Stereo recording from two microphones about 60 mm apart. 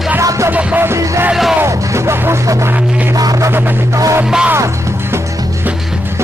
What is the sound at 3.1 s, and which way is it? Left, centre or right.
Music, right.